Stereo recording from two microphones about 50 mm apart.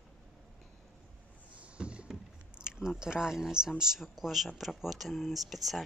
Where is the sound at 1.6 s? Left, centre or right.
Right.